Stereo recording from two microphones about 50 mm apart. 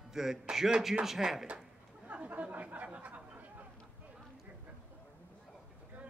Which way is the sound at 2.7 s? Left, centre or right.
Right.